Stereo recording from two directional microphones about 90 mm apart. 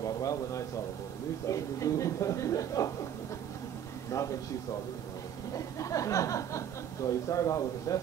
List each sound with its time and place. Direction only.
0.0 s a sound: 40° left (ahead or behind)
1.5 s speech: 35° left (ahead or behind)
4.1 s speech: 35° left (ahead or behind)
5.5 s speech: 35° left (ahead or behind)